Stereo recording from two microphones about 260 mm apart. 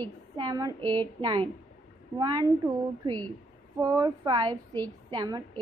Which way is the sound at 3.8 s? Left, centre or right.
Centre.